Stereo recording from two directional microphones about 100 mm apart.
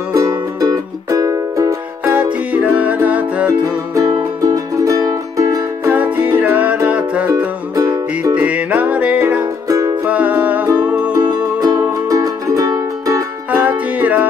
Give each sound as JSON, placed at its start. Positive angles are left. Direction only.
{"t": 0.1, "sound": "music", "side_deg": -35}
{"t": 2.5, "sound": "music", "side_deg": -15}
{"t": 3.9, "sound": "music", "side_deg": -35}
{"t": 5.9, "sound": "music", "side_deg": -15}
{"t": 7.7, "sound": "music", "side_deg": -40}
{"t": 8.4, "sound": "music", "side_deg": -15}
{"t": 9.7, "sound": "music", "side_deg": -35}
{"t": 10.0, "sound": "music", "side_deg": -15}
{"t": 11.1, "sound": "music", "side_deg": -40}
{"t": 13.5, "sound": "music", "side_deg": -15}